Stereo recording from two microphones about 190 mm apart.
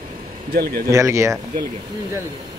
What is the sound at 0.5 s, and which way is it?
Speech, 55° right (ahead or behind).